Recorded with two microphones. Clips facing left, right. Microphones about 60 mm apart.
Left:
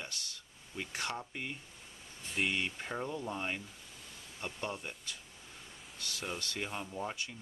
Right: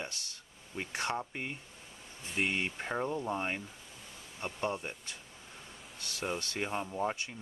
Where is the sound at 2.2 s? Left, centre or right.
Centre.